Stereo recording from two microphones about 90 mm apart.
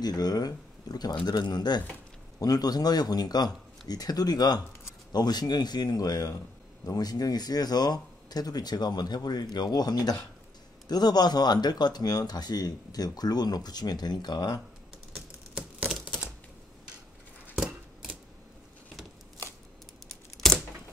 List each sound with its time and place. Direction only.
0.0 s speech: 45° left (ahead or behind)
17.6 s scissors: 5° right (ahead or behind)